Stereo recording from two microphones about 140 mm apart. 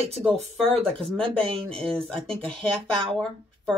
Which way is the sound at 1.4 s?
40° right (ahead or behind).